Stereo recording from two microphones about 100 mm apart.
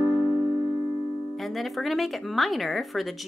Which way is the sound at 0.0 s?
40° left (ahead or behind).